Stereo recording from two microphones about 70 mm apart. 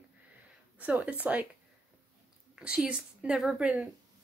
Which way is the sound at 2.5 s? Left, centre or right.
Centre.